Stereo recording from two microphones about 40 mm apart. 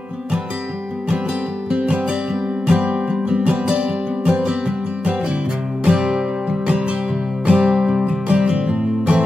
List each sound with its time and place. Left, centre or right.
1.8 s music: right
5.9 s music: centre
7.4 s music: right
8.0 s music: right